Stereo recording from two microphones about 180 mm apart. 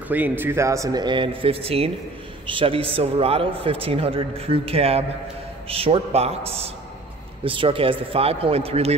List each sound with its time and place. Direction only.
0.1 s a man's voice: 10° right (ahead or behind); by 8.9 s 35° right (ahead or behind)